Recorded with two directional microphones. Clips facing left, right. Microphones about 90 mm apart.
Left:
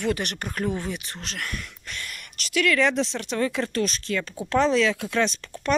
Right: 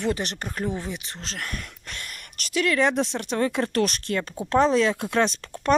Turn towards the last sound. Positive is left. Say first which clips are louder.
# right 3 dB
turn(degrees=-45)  # may be behind; listen again after turning